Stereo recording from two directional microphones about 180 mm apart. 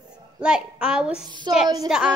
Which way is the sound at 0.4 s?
5° right (ahead or behind).